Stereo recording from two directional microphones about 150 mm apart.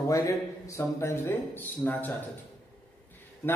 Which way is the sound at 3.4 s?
10° left (ahead or behind).